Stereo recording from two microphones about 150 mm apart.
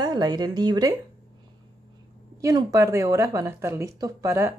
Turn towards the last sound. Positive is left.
turn(degrees=-20)  # may be behind; listen again after turning